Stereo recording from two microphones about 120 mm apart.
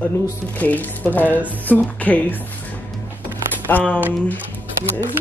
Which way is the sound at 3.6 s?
15° left (ahead or behind).